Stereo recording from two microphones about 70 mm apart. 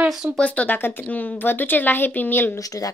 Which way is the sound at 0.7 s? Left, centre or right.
Left.